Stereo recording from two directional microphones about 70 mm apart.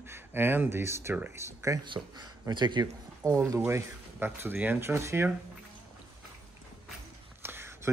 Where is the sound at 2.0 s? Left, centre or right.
Right.